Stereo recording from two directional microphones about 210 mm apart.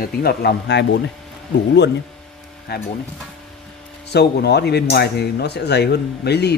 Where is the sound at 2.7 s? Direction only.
50° left (ahead or behind).